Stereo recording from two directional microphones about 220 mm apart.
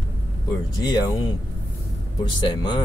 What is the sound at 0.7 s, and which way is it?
Speech, 15° left (ahead or behind).